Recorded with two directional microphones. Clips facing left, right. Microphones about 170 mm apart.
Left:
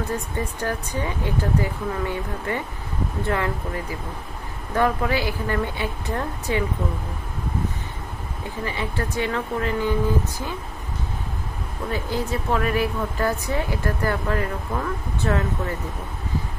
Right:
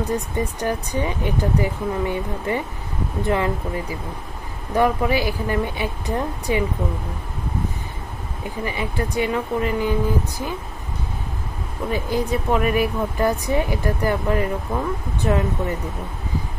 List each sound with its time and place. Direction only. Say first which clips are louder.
0.1 s speech: right 4 dB; 15° right (ahead or behind)
8.6 s speech: right 2 dB; 15° right (ahead or behind)
11.9 s speech: right 4 dB; 15° right (ahead or behind)